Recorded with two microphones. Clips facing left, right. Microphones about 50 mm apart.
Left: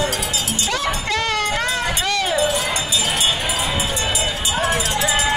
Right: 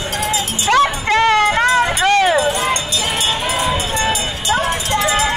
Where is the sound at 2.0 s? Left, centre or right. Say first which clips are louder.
Right 10 dB; right.